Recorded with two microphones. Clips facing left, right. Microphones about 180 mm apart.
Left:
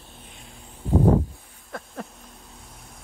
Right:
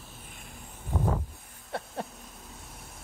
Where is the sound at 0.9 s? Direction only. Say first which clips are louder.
Left 11 dB; 40° left (ahead or behind).